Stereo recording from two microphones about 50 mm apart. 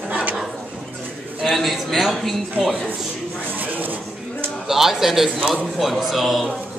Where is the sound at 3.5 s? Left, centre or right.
Right.